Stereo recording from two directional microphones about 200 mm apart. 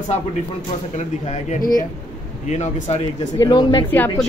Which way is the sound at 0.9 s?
35° left (ahead or behind).